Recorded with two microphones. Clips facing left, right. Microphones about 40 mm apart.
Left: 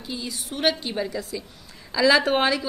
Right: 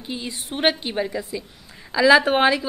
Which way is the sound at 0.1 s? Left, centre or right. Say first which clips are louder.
Right 2 dB; right.